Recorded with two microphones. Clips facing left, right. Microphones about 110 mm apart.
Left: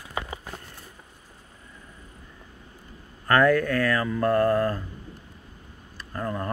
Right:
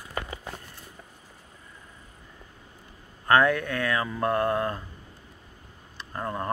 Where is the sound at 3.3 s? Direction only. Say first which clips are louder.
Left 2 dB; 20° right (ahead or behind).